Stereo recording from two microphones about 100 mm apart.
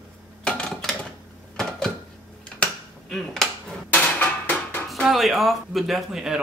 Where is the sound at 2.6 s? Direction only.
5° left (ahead or behind).